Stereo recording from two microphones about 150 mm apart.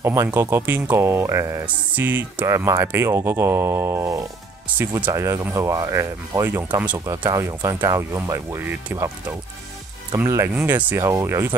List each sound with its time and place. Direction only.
0.0 s speech: 20° right (ahead or behind)
7.2 s speech: 25° right (ahead or behind)
10.1 s speech: 20° right (ahead or behind)